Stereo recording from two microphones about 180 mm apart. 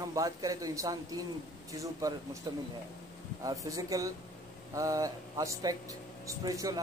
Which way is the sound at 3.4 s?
20° right (ahead or behind).